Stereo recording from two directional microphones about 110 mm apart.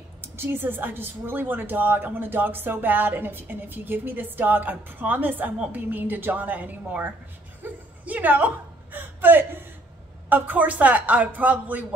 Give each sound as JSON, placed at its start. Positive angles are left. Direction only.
{"t": 0.2, "sound": "a woman's voice", "side_deg": -20}
{"t": 7.6, "sound": "a sound", "side_deg": -15}
{"t": 10.3, "sound": "a woman's voice", "side_deg": -15}